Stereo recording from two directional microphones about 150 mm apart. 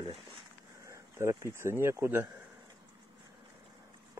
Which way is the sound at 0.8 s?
20° right (ahead or behind).